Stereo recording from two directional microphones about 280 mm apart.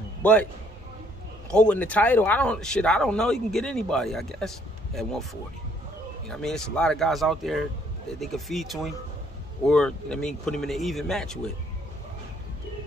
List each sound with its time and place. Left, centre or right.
0.2 s a man's voice: centre
1.5 s speech: centre